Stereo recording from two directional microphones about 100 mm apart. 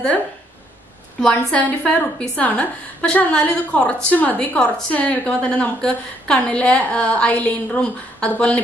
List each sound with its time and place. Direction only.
1.5 s a woman's voice: 15° left (ahead or behind)